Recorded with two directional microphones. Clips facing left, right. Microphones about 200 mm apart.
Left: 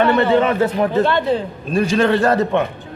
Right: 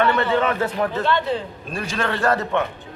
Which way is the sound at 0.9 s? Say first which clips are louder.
Left 5 dB; 40° left (ahead or behind).